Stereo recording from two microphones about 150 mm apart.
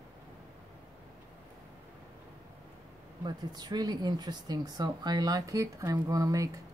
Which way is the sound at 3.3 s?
25° right (ahead or behind).